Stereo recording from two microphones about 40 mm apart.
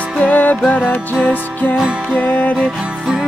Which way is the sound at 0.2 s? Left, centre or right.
Left.